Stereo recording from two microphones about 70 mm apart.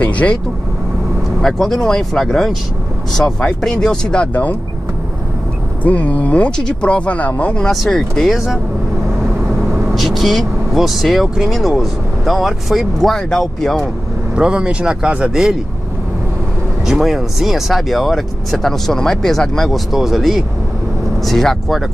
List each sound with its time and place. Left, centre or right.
0.0 s speech: centre
1.4 s speech: centre
4.3 s speech: left
5.9 s speech: left
7.6 s speech: centre
9.9 s speech: centre
14.3 s speech: centre
16.8 s speech: centre